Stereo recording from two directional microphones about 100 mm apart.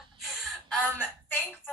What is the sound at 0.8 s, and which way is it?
Speech, 15° left (ahead or behind).